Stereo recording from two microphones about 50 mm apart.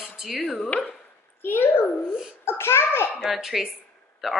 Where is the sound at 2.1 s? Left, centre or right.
Centre.